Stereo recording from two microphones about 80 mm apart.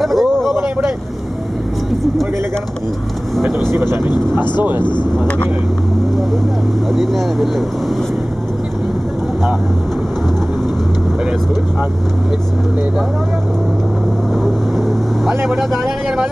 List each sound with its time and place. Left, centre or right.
0.0 s a sound: centre
0.6 s vehicle: right
6.9 s speech: centre
14.3 s vehicle: centre